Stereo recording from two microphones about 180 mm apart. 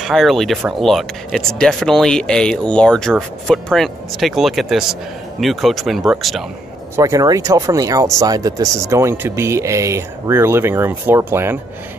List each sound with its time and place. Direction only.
0.0 s speech: centre (ahead or behind)
7.0 s speech: 20° right (ahead or behind)